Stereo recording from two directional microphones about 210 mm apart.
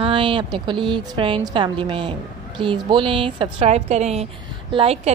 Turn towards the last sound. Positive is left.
turn(degrees=-30)  # may be behind; listen again after turning